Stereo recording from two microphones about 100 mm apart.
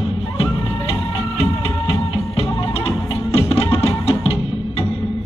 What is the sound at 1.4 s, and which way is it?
Music, 70° left (ahead or behind).